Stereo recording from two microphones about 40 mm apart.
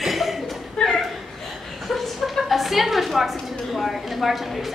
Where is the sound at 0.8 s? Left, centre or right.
Left.